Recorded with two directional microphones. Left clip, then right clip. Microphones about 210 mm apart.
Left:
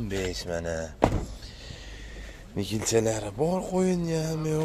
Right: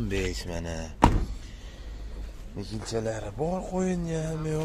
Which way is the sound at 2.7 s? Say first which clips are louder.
Left 6 dB; 35° left (ahead or behind).